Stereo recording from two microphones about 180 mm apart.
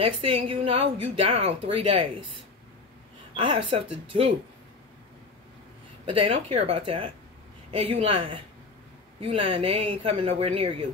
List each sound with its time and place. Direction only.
0.0 s speech: 30° right (ahead or behind)
3.3 s speech: 30° right (ahead or behind)
6.0 s speech: 30° right (ahead or behind)